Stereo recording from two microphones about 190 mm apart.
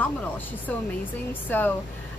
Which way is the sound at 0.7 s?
5° left (ahead or behind).